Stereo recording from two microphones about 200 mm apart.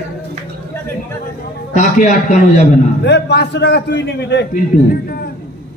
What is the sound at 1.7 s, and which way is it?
Speech, 40° left (ahead or behind).